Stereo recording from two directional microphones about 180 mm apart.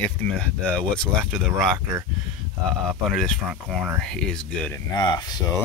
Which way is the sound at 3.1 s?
Centre (ahead or behind).